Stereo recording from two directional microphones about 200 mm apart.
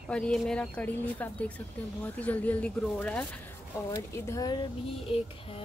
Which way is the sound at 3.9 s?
20° left (ahead or behind).